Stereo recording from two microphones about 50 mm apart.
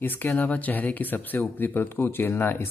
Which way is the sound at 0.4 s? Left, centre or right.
Left.